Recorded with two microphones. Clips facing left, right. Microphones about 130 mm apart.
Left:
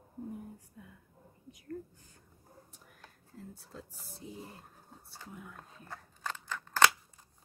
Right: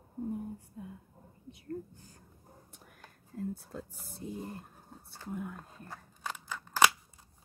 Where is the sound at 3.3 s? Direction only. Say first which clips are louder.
Right 10 dB; 55° right (ahead or behind).